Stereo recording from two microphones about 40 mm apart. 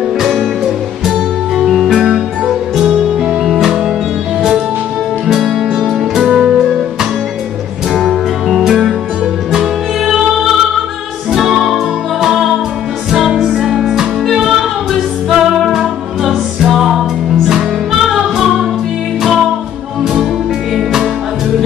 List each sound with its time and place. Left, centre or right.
1.6 s music: centre
2.1 s music: centre
5.2 s music: centre
8.5 s music: centre
11.6 s music: centre
13.5 s music: centre
16.7 s music: centre
20.7 s music: centre